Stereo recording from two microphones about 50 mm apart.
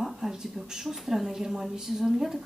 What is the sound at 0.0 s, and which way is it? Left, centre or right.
A woman's voice, centre.